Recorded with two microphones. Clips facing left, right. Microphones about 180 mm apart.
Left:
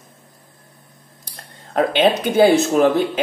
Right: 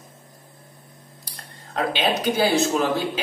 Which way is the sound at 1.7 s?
55° left (ahead or behind).